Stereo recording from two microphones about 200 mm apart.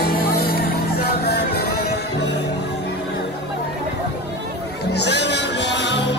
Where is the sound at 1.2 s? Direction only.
55° left (ahead or behind).